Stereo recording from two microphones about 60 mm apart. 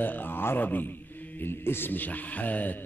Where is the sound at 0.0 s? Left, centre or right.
Left.